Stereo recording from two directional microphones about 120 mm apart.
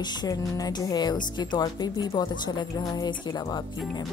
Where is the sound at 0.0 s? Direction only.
35° left (ahead or behind).